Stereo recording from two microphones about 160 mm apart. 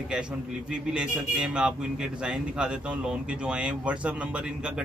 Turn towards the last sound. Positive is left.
turn(degrees=-10)  # may be behind; listen again after turning